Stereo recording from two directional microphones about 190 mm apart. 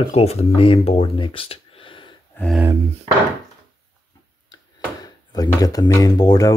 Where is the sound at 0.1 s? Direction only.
35° left (ahead or behind).